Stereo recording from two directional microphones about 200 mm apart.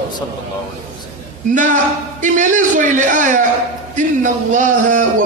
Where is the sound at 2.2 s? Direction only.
40° right (ahead or behind).